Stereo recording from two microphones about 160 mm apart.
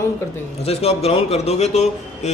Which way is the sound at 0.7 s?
40° left (ahead or behind).